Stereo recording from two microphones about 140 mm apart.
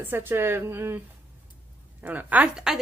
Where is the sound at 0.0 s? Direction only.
15° right (ahead or behind).